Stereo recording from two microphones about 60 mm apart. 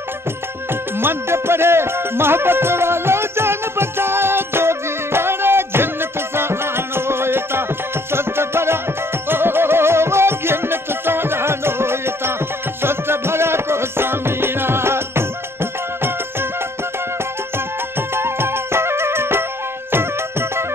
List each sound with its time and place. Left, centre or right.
0.9 s music: right
17.9 s music: right